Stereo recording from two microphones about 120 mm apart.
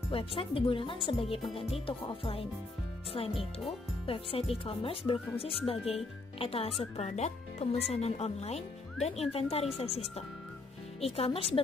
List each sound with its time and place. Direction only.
0.1 s speech: 50° left (ahead or behind)
4.0 s speech: 50° left (ahead or behind)
6.8 s speech: 65° left (ahead or behind)